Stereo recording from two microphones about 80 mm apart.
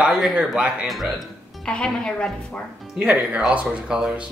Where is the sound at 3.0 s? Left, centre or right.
Centre.